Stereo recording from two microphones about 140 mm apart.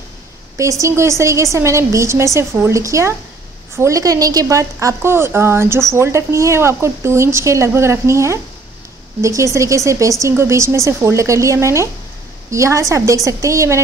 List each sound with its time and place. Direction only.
0.6 s a woman's voice: 20° right (ahead or behind)